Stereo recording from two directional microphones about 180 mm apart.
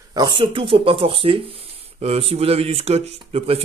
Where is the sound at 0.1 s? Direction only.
25° right (ahead or behind).